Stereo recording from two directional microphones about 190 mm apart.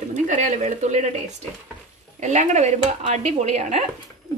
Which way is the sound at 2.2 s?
40° right (ahead or behind).